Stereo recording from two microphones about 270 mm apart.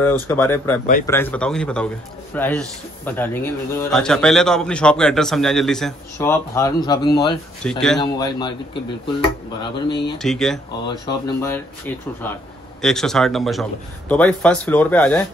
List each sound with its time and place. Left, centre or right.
0.0 s a man's voice: centre
7.6 s a man's voice: centre
8.0 s speech: centre
9.6 s speech: centre
10.1 s a man's voice: centre
10.9 s speech: centre
12.8 s a man's voice: centre